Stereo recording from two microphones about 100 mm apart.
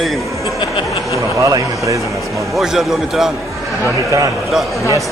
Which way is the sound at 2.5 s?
5° right (ahead or behind).